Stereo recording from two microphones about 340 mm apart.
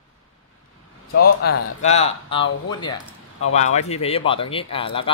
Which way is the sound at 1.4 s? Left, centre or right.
Left.